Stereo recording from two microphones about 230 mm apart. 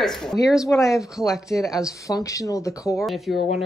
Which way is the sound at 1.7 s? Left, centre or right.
Centre.